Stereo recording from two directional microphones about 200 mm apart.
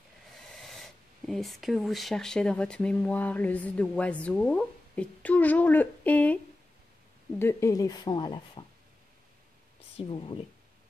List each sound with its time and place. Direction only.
0.4 s speech: centre (ahead or behind); by 8.6 s 20° left (ahead or behind)
9.9 s speech: 25° left (ahead or behind)